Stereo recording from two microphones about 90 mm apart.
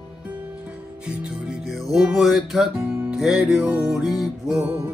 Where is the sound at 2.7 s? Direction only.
25° right (ahead or behind).